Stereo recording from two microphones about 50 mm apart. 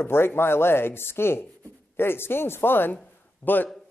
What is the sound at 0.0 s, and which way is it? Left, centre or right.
Speech, left.